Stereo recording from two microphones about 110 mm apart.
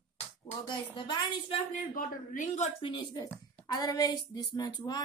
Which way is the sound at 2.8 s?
45° left (ahead or behind).